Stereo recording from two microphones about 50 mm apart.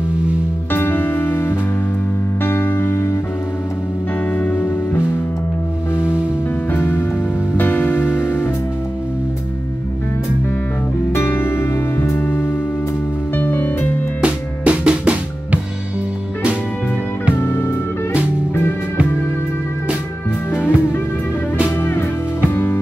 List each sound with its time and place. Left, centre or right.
0.7 s music: left
4.3 s music: left
6.7 s music: left
11.1 s music: left
12.2 s music: left
14.2 s drum: right
17.4 s music: left
20.5 s music: left